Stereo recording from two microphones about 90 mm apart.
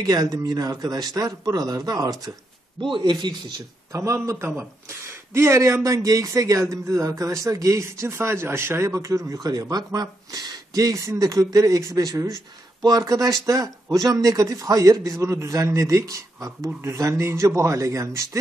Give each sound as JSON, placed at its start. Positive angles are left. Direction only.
{"t": 0.0, "sound": "a man's voice", "side_deg": -45}
{"t": 2.9, "sound": "speech", "side_deg": -55}
{"t": 3.9, "sound": "a man's voice", "side_deg": -35}